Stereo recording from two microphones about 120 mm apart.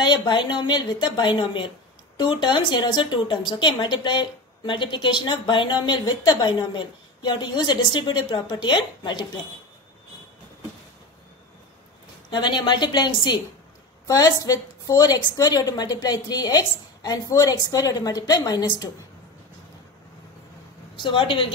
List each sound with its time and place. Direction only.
0.0 s a woman's voice: 40° left (ahead or behind)
12.3 s a woman's voice: 40° left (ahead or behind)
21.0 s speech: 45° left (ahead or behind)